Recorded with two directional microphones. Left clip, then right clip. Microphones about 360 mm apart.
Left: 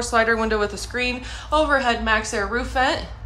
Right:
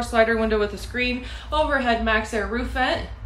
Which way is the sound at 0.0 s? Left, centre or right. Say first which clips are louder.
Even; centre.